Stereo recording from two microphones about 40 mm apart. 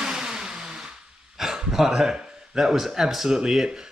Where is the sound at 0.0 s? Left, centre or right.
Centre.